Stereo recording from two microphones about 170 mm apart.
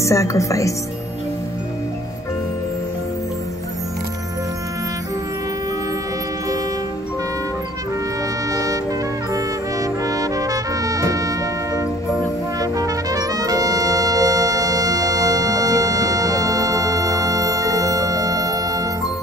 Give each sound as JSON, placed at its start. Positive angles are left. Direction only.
{"t": 0.0, "sound": "speech", "side_deg": 20}
{"t": 8.5, "sound": "music", "side_deg": -20}